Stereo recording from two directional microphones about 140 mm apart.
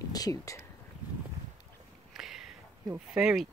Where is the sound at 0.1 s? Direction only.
25° left (ahead or behind).